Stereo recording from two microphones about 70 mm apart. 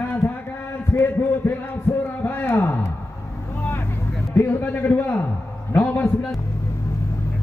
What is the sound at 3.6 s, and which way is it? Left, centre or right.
Vehicle, left.